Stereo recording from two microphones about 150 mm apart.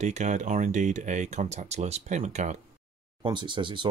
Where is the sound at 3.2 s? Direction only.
30° right (ahead or behind).